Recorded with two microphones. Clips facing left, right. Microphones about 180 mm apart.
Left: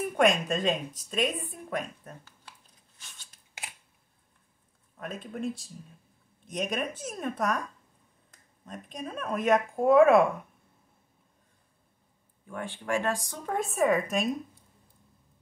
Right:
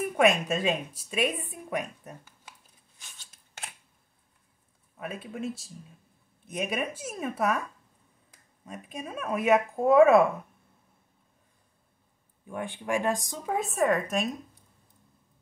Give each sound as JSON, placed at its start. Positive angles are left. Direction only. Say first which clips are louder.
{"t": 0.0, "sound": "a woman's voice", "louder": "right 1 dB", "side_deg": -5}
{"t": 4.9, "sound": "a woman's voice", "louder": "even", "side_deg": -5}
{"t": 12.4, "sound": "a woman's voice", "louder": "right 1 dB", "side_deg": -20}
{"t": 13.6, "sound": "speech", "louder": "left 1 dB", "side_deg": 0}